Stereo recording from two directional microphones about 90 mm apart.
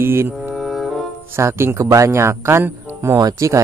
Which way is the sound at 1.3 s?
30° right (ahead or behind).